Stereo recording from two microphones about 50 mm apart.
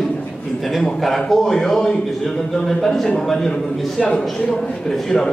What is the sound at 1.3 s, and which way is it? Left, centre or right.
A man's voice, centre.